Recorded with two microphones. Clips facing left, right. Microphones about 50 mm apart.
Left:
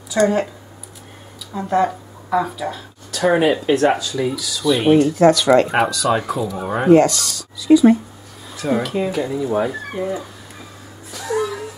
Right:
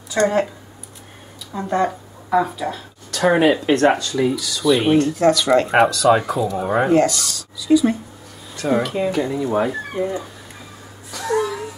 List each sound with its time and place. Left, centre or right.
0.1 s speech: centre
1.5 s speech: centre
7.6 s speech: centre
8.5 s speech: centre
11.1 s a sound: centre